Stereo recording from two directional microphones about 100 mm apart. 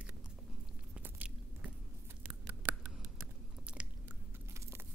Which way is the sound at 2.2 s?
15° right (ahead or behind).